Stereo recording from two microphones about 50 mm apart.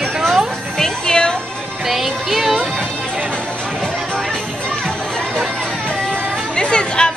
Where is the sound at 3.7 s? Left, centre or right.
Centre.